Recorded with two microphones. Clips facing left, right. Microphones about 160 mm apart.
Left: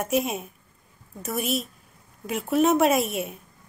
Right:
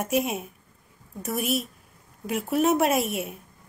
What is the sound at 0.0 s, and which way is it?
A woman's voice, 5° right (ahead or behind).